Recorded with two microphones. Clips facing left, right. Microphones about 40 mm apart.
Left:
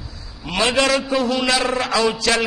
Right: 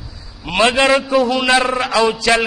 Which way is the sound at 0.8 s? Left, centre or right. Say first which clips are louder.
Right 2 dB; right.